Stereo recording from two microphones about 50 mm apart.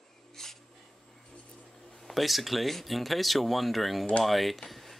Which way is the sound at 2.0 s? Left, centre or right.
Centre.